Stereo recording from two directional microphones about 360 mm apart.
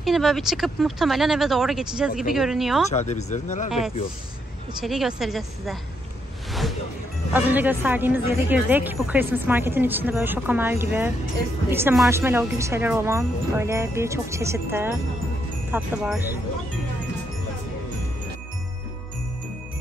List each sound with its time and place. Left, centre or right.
0.0 s a woman's voice: centre
2.9 s speech: centre
4.8 s a woman's voice: centre
7.3 s a woman's voice: centre